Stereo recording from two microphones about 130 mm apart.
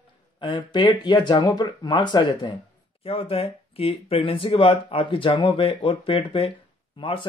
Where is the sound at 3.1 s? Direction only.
45° left (ahead or behind).